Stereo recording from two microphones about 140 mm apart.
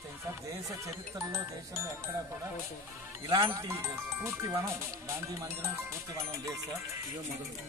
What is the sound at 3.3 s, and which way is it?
Speech, 20° right (ahead or behind).